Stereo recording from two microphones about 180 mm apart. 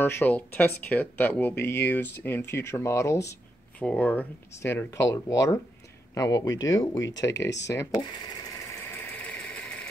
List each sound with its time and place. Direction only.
0.0 s speech: 10° left (ahead or behind)
7.3 s speech: 75° left (ahead or behind)
7.6 s speech: 15° left (ahead or behind)
9.1 s engine: 10° left (ahead or behind)